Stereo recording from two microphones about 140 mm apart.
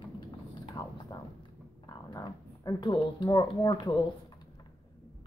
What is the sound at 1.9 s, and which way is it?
Speech, 30° left (ahead or behind).